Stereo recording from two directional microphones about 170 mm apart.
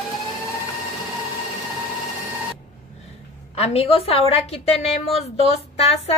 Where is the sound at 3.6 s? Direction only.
35° left (ahead or behind).